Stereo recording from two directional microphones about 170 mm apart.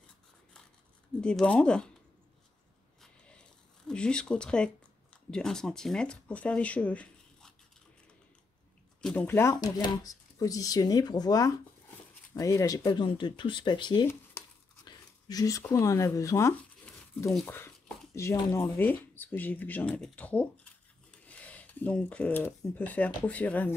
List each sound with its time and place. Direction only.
1.2 s speech: 5° left (ahead or behind)
3.0 s a sound: 5° left (ahead or behind)
5.1 s speech: 5° left (ahead or behind)
9.0 s speech: 10° left (ahead or behind); by 14.0 s 25° left (ahead or behind)
14.4 s a sound: 15° left (ahead or behind)
14.9 s speech: 20° left (ahead or behind)